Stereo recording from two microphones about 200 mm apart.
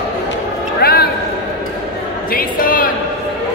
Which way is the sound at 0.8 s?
50° left (ahead or behind).